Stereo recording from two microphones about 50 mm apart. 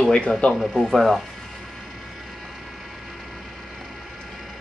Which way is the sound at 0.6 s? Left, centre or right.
Centre.